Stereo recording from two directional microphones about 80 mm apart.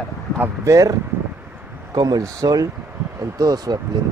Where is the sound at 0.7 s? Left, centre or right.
Right.